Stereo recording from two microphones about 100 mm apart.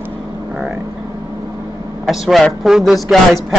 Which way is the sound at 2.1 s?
5° right (ahead or behind).